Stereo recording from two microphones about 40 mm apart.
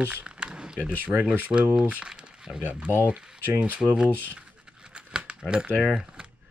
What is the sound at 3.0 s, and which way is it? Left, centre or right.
Speech, right.